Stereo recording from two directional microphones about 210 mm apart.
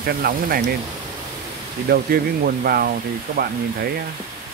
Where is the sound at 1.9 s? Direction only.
45° right (ahead or behind).